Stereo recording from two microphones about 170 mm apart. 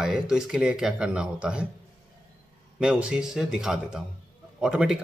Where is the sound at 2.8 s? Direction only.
5° right (ahead or behind).